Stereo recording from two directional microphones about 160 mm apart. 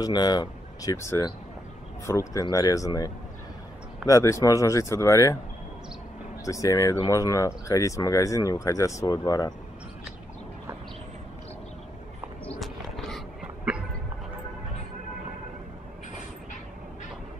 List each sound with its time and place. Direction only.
0.0 s speech: 25° left (ahead or behind)
4.1 s speech: 20° left (ahead or behind)
6.4 s speech: 20° left (ahead or behind)
12.4 s dog: centre (ahead or behind)